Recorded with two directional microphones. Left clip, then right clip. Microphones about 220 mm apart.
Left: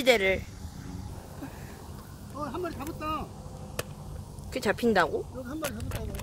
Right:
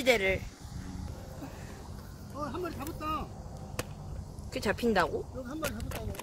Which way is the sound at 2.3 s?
Centre (ahead or behind).